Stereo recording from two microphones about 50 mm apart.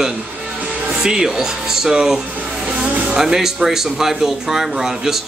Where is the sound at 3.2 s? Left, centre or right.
Centre.